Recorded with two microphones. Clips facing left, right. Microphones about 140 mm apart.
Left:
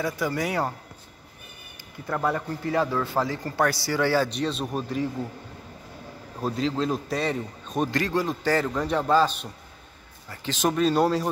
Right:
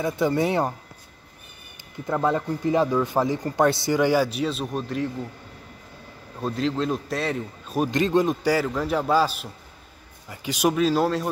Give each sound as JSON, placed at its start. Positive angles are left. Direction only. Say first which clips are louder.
{"t": 0.0, "sound": "speech", "louder": "right 5 dB", "side_deg": -25}
{"t": 2.0, "sound": "speech", "louder": "right 3 dB", "side_deg": -20}
{"t": 6.4, "sound": "a man's voice", "louder": "right 1 dB", "side_deg": 0}
{"t": 7.9, "sound": "speech", "louder": "right 5 dB", "side_deg": -20}
{"t": 8.5, "sound": "a man's voice", "louder": "right 1 dB", "side_deg": -5}